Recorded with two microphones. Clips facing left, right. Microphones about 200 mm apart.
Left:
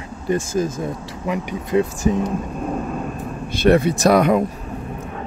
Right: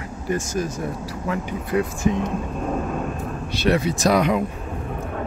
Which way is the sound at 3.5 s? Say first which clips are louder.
Left 6 dB; 50° left (ahead or behind).